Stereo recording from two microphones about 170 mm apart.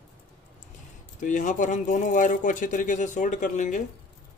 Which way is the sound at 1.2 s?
50° left (ahead or behind).